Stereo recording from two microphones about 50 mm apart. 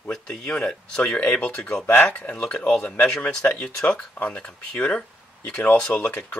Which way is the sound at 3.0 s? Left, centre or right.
Left.